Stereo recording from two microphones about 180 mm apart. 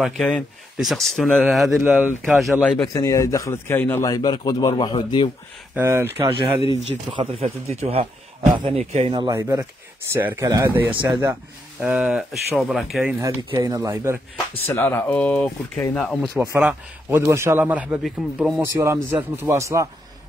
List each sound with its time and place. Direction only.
0.0 s speech: 5° left (ahead or behind)
2.9 s a man's voice: 20° left (ahead or behind)
5.8 s a man's voice: 15° right (ahead or behind)
6.2 s speech: 25° right (ahead or behind)
6.6 s speech: 30° left (ahead or behind)
7.2 s a man's voice: 35° right (ahead or behind)
9.3 s a man's voice: 15° right (ahead or behind)
13.2 s a man's voice: 20° right (ahead or behind)
14.6 s speech: 15° left (ahead or behind)
16.3 s a man's voice: 10° right (ahead or behind)
18.6 s a man's voice: 15° right (ahead or behind)